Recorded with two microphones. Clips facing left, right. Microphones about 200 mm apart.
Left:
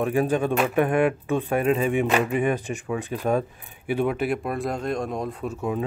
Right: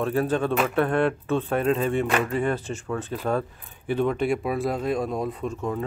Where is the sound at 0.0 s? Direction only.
15° left (ahead or behind).